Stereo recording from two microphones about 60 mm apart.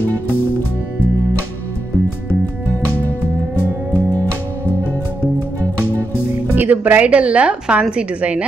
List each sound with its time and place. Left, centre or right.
6.5 s a woman's voice: right